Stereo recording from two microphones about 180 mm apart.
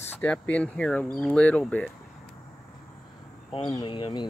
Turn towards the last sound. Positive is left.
turn(degrees=25)  # may be behind; listen again after turning